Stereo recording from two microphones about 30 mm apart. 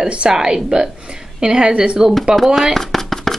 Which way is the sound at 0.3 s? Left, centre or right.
Right.